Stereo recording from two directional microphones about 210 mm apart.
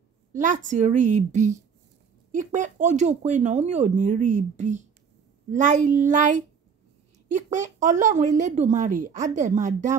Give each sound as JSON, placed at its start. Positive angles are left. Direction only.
{"t": 0.3, "sound": "speech", "side_deg": -35}